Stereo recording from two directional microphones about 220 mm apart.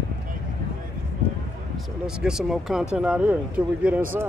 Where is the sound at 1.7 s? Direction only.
5° right (ahead or behind).